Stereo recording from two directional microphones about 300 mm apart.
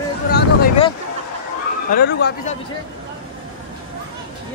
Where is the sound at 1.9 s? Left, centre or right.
Left.